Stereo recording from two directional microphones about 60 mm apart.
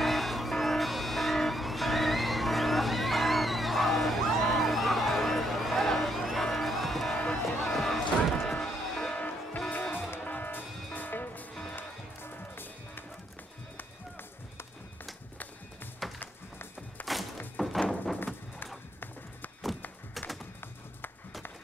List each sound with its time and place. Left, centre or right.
0.0 s vehicle: centre
7.7 s music: centre
9.7 s music: left
16.0 s music: centre